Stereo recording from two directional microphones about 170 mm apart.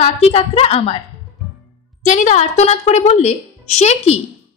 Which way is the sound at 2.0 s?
45° left (ahead or behind).